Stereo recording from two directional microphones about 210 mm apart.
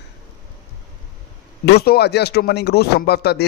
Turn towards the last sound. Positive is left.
turn(degrees=50)  # may be behind; listen again after turning